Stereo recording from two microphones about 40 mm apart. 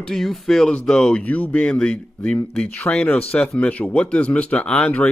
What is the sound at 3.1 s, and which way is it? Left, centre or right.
Speech, left.